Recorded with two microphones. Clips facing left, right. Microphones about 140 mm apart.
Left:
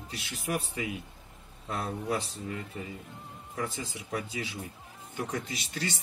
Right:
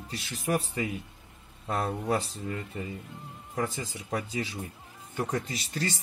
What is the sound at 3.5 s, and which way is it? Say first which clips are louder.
Speech: right 3 dB; 40° right (ahead or behind).